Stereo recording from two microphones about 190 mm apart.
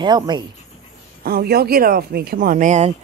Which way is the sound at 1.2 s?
55° right (ahead or behind).